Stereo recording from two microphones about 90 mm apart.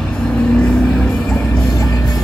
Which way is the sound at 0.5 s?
15° left (ahead or behind).